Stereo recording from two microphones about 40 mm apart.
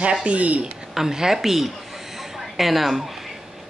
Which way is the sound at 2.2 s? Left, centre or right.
Centre.